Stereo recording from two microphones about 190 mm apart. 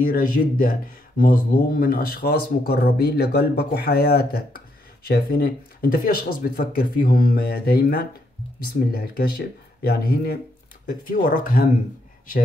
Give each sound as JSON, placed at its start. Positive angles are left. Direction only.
{"t": 0.0, "sound": "speech", "side_deg": 45}
{"t": 9.8, "sound": "speech", "side_deg": 55}